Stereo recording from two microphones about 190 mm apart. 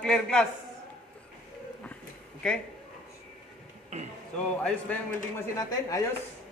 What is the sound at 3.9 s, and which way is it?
Speech, 35° right (ahead or behind).